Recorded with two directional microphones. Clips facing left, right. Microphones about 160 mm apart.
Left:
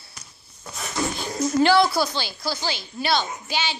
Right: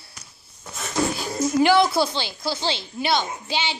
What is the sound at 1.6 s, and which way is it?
A woman's voice, 20° right (ahead or behind).